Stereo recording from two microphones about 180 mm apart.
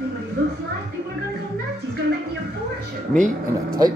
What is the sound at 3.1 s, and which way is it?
Speech, 45° right (ahead or behind).